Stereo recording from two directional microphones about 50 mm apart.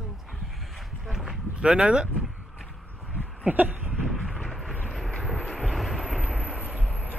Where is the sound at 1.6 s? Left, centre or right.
Right.